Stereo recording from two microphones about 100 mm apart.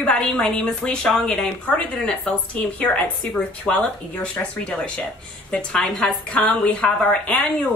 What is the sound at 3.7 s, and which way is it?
A woman's voice, 10° left (ahead or behind).